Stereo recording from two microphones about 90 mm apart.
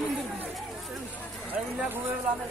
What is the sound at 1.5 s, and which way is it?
Speech, 20° right (ahead or behind).